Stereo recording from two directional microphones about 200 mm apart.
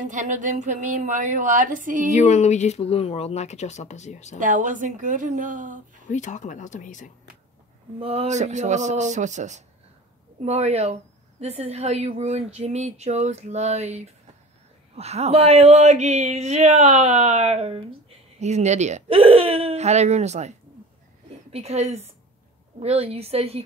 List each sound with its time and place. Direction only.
0.0 s speech: 40° right (ahead or behind)
2.0 s speech: 35° left (ahead or behind)
4.4 s speech: 40° right (ahead or behind)
6.0 s speech: 35° left (ahead or behind)
8.0 s speech: 30° right (ahead or behind)